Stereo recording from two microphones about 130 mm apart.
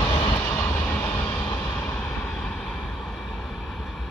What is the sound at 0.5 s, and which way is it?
Train, 20° left (ahead or behind).